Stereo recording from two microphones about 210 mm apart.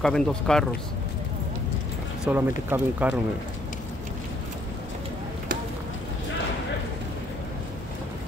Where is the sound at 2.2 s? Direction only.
10° right (ahead or behind).